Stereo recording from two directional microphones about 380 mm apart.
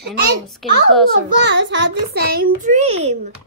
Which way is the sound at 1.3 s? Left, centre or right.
Right.